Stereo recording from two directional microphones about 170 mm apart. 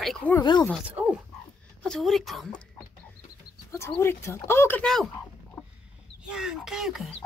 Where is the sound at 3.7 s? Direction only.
15° left (ahead or behind).